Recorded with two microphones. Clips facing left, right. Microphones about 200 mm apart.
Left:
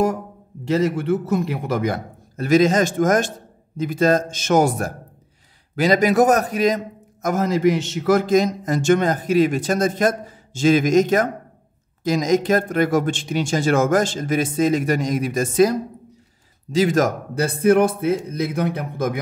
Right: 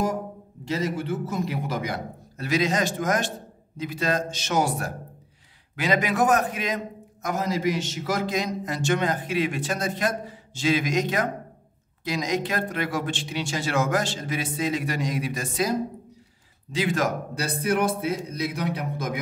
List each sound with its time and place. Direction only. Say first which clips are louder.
0.7 s a man's voice: left 8 dB; 60° left (ahead or behind)
16.7 s a man's voice: left 7 dB; 40° left (ahead or behind)